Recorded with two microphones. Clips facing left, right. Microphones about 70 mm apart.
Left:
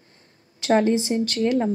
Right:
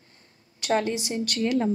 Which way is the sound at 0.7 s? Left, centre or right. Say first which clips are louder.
Left 6 dB; left.